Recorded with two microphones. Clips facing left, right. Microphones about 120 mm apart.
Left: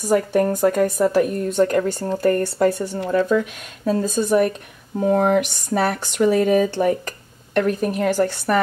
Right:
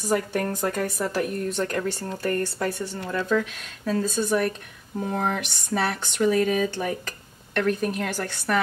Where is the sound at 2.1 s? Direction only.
30° left (ahead or behind).